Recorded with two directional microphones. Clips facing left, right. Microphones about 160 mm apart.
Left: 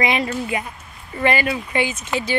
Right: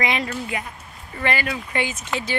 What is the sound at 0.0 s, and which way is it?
Speech, 10° left (ahead or behind).